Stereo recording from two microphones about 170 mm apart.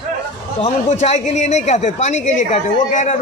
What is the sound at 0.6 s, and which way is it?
Speech, 45° left (ahead or behind).